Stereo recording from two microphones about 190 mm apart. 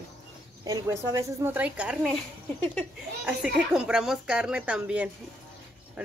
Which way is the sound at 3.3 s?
5° right (ahead or behind).